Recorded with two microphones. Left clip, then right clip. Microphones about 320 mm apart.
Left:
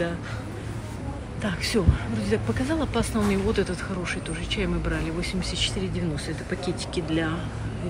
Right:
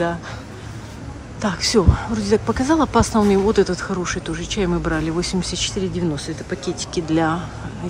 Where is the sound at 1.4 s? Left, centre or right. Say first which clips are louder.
Right 8 dB; centre.